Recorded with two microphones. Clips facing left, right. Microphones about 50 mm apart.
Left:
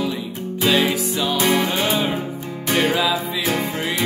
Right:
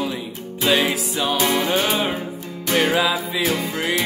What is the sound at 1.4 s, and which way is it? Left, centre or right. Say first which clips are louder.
Music: left 3 dB; left.